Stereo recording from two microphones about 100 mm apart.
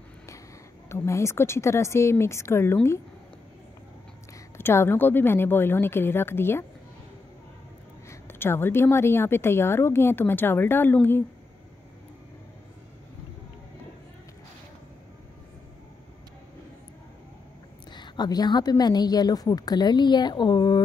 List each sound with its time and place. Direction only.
0.8 s a woman's voice: 30° left (ahead or behind)
4.6 s a woman's voice: 25° left (ahead or behind)
8.1 s a woman's voice: 25° left (ahead or behind)
17.9 s a woman's voice: 45° left (ahead or behind)